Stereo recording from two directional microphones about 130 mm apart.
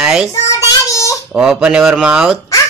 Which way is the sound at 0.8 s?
25° left (ahead or behind).